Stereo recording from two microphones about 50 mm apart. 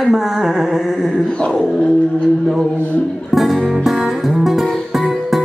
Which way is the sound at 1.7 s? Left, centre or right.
Left.